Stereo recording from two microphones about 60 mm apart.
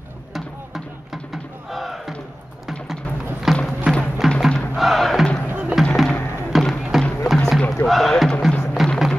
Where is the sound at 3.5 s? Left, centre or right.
Centre.